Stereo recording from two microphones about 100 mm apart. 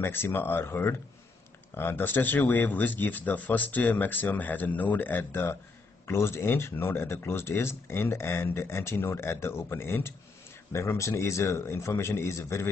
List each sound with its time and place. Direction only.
0.0 s speech: 20° left (ahead or behind)